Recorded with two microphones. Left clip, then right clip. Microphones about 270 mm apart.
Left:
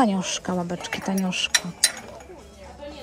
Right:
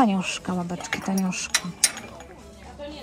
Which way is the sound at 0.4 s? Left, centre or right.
Centre.